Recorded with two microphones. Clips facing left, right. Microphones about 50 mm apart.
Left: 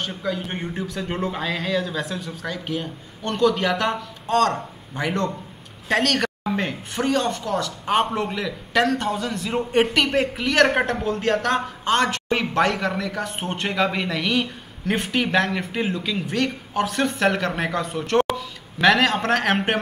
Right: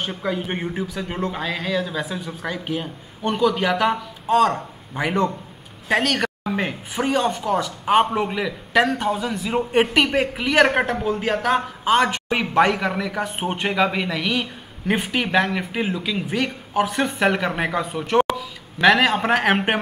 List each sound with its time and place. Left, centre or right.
0.0 s speech: centre